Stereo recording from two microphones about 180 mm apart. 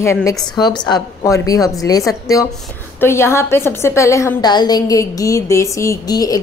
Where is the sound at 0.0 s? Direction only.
15° left (ahead or behind).